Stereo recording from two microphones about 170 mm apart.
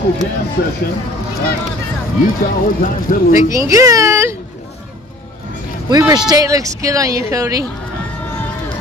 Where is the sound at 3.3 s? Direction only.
20° right (ahead or behind).